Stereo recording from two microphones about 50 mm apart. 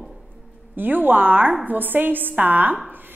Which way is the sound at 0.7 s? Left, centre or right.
Right.